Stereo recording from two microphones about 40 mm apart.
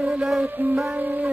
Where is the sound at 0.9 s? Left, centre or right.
Right.